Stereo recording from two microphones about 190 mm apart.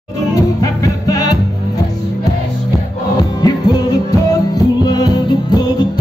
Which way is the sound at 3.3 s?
20° left (ahead or behind).